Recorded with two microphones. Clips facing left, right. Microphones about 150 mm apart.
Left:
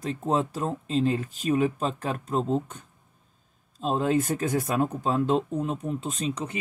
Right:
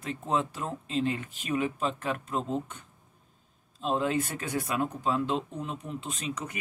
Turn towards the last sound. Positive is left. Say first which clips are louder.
# left 5 dB
turn(degrees=35)  # may be behind; listen again after turning